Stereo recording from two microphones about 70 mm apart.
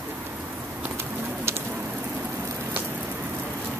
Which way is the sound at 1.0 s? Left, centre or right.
Right.